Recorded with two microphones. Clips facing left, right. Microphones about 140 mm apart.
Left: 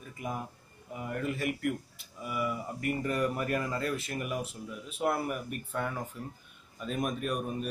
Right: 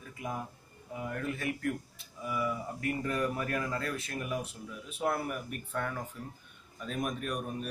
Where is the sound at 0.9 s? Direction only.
5° left (ahead or behind).